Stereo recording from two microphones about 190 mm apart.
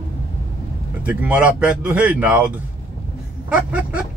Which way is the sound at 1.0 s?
5° right (ahead or behind).